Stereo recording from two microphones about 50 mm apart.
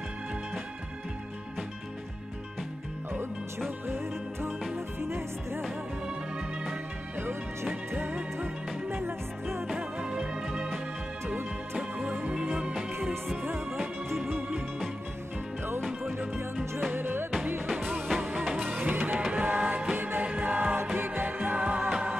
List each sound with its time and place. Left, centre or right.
3.1 s music: right
8.1 s music: right
8.9 s music: right
9.8 s music: centre
12.0 s music: right
14.1 s music: centre
16.1 s music: right
17.6 s music: centre
18.9 s music: right
19.3 s music: right
20.7 s music: right